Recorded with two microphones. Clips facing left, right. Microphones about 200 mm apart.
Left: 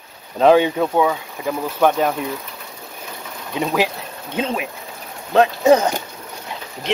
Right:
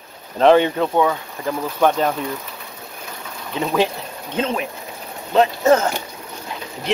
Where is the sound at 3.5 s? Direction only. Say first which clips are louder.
Right 1 dB; 10° left (ahead or behind).